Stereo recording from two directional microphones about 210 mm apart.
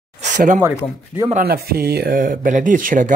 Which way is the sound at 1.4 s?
45° right (ahead or behind).